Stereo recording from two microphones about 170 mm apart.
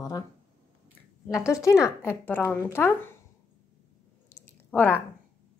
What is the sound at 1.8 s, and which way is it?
A woman's voice, 15° left (ahead or behind).